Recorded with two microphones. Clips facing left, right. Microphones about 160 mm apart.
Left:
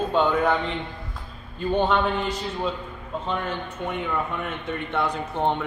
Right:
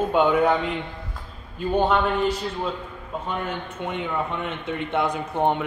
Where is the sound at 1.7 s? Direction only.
5° right (ahead or behind).